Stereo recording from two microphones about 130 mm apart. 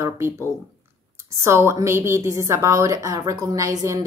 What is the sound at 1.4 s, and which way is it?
A woman's voice, 20° right (ahead or behind).